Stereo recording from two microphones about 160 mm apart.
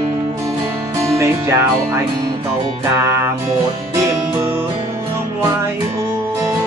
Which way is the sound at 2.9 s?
15° right (ahead or behind).